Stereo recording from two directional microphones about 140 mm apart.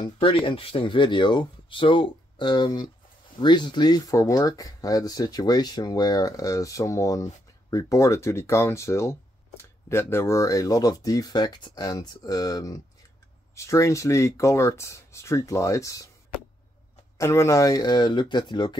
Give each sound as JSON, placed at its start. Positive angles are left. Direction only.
{"t": 0.0, "sound": "speech", "side_deg": 40}
{"t": 17.2, "sound": "speech", "side_deg": 20}